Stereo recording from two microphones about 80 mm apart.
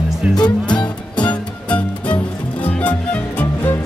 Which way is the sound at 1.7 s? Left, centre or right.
Centre.